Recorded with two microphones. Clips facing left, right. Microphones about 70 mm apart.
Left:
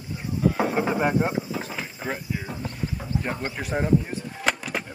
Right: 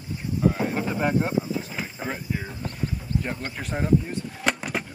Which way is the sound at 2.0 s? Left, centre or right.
Centre.